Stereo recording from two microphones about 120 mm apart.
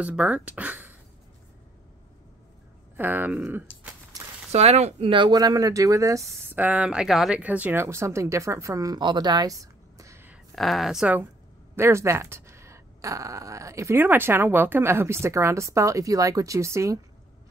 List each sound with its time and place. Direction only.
0.0 s speech: 10° right (ahead or behind)
3.0 s speech: 15° right (ahead or behind)
4.5 s speech: 60° right (ahead or behind)
5.1 s speech: 35° right (ahead or behind)
6.5 s speech: 15° right (ahead or behind)
7.8 s speech: 25° right (ahead or behind)
9.0 s a sound: 40° right (ahead or behind); by 10.4 s 20° right (ahead or behind)
10.5 s speech: centre (ahead or behind)
11.7 s speech: 20° right (ahead or behind)